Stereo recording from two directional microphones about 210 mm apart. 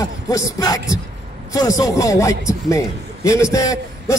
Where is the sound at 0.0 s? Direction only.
15° left (ahead or behind).